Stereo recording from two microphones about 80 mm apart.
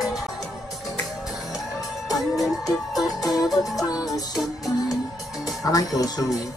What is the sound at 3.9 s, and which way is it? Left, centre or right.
Music, left.